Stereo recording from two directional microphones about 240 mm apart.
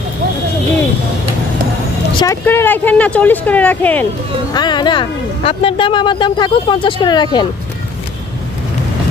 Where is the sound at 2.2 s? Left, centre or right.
Centre.